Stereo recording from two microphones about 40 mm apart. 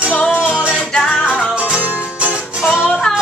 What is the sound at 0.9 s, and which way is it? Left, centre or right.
Music, centre.